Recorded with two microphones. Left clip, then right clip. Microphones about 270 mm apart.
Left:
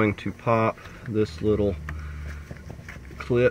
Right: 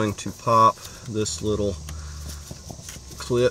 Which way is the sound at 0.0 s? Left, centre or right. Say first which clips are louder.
Left 1 dB; centre.